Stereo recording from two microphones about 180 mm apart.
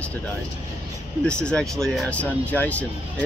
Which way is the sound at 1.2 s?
5° left (ahead or behind).